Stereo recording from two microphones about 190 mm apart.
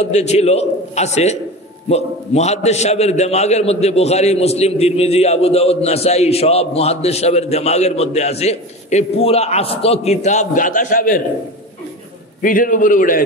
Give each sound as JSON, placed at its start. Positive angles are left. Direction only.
{"t": 0.0, "sound": "a man's voice", "side_deg": 35}
{"t": 12.4, "sound": "a man's voice", "side_deg": 45}